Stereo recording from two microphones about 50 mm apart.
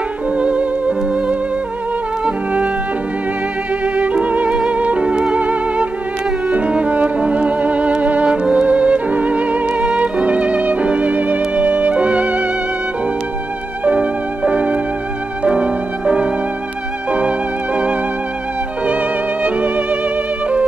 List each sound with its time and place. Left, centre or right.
0.4 s music: right
3.8 s violin: right
4.6 s music: right
13.8 s music: right
15.4 s violin: right
19.4 s music: right